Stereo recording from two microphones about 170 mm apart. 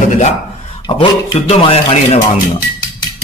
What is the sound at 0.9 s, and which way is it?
A man's voice, 30° left (ahead or behind).